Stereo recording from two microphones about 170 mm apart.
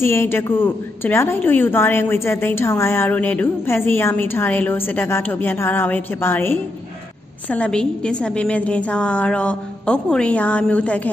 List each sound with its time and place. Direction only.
0.0 s a woman's voice: 15° left (ahead or behind)